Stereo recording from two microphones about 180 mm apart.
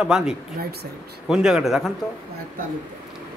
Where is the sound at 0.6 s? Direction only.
60° right (ahead or behind).